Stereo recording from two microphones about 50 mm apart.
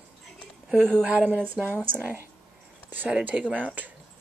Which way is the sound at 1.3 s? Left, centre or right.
Right.